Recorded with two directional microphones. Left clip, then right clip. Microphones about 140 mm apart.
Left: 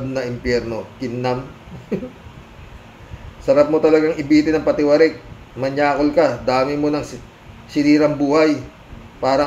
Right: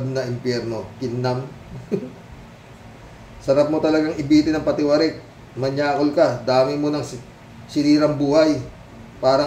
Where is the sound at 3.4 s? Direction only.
15° left (ahead or behind).